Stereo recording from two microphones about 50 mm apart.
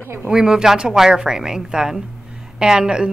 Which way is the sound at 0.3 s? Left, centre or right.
Centre.